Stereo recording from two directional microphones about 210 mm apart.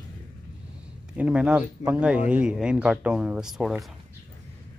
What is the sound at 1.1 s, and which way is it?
Speech, 5° right (ahead or behind).